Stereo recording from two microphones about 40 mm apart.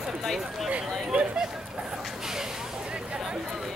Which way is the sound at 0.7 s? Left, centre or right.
Right.